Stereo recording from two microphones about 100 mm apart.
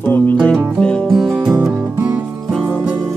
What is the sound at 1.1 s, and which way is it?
Music, centre (ahead or behind).